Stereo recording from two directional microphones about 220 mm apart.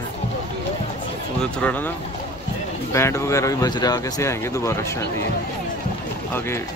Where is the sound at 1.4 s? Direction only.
5° left (ahead or behind).